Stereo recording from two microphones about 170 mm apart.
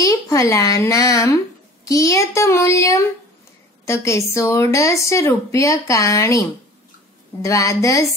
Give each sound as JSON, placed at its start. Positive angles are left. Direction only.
{"t": 0.0, "sound": "a child's voice", "side_deg": 20}
{"t": 7.4, "sound": "a child's voice", "side_deg": 20}